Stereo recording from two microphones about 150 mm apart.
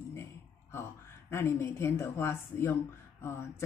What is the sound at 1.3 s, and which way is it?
Speech, 15° left (ahead or behind).